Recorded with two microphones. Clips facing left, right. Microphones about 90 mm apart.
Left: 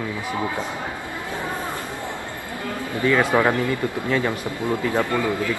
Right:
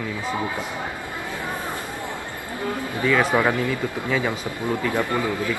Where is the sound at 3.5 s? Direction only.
15° right (ahead or behind).